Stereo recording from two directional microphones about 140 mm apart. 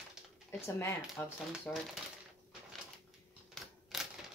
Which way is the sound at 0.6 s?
15° left (ahead or behind).